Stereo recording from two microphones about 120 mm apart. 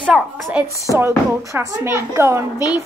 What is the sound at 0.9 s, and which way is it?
Speech, 25° right (ahead or behind).